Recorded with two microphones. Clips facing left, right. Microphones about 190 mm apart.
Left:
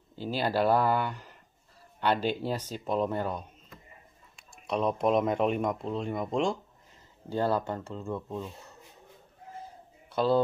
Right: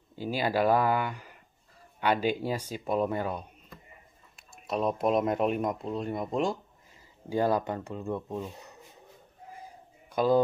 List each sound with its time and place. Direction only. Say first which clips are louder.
0.1 s speech: right 1 dB; 10° right (ahead or behind)
7.2 s speech: right 2 dB; 15° right (ahead or behind)
10.1 s speech: right 1 dB; 10° right (ahead or behind)